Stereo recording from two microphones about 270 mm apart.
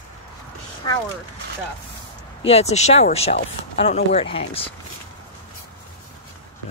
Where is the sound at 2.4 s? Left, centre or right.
Left.